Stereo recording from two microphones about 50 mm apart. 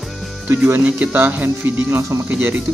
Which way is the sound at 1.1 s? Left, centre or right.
Right.